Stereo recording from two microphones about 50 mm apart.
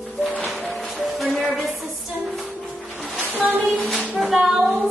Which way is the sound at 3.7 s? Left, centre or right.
Centre.